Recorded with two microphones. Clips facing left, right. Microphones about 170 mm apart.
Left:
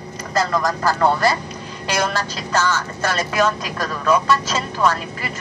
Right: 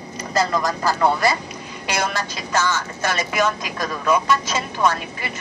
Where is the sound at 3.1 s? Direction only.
15° right (ahead or behind).